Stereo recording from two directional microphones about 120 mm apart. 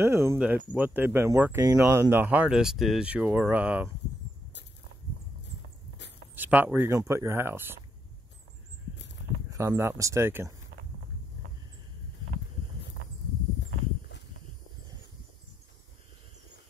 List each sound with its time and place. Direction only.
0.0 s speech: 20° right (ahead or behind)
6.3 s speech: 15° right (ahead or behind)
9.5 s speech: 20° right (ahead or behind)